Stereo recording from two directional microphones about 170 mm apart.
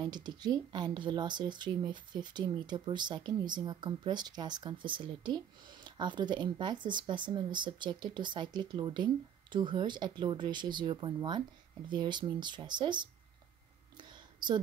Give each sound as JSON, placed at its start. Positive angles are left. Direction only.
{"t": 0.0, "sound": "speech", "side_deg": -25}
{"t": 13.9, "sound": "whispering", "side_deg": -25}